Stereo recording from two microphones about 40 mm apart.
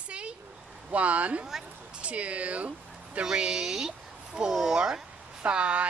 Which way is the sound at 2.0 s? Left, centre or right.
Right.